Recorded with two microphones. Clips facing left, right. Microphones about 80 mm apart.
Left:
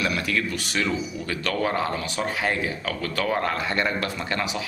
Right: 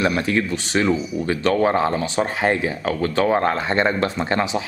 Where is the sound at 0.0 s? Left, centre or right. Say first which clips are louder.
Right 6 dB; right.